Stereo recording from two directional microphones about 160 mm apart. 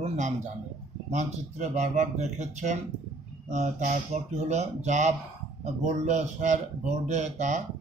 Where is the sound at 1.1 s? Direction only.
45° right (ahead or behind).